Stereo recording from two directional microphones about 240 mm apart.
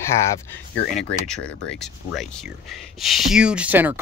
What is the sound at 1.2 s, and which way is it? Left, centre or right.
Speech, centre.